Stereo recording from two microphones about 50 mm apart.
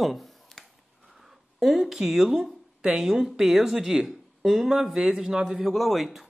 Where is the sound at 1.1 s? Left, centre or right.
Centre.